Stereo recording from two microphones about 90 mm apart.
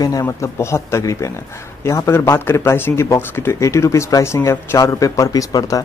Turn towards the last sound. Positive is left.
turn(degrees=40)  # may be behind; listen again after turning